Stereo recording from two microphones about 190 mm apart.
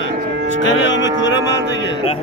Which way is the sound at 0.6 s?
70° left (ahead or behind).